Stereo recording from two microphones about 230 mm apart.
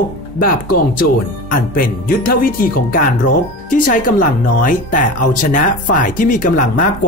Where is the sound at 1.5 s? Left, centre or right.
Left.